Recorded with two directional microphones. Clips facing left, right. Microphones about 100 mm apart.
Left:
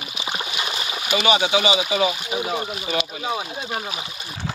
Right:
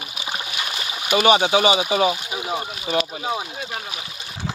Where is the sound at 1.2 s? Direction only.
45° right (ahead or behind).